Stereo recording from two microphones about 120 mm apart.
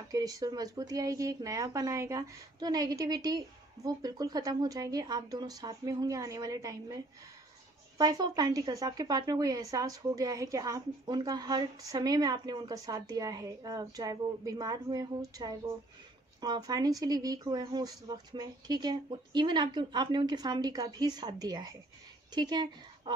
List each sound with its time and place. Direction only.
0.1 s a woman's voice: 30° right (ahead or behind)
8.0 s a woman's voice: 35° right (ahead or behind)